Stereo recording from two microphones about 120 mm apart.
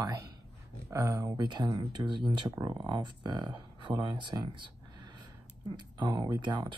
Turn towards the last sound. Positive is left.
turn(degrees=-40)  # may be behind; listen again after turning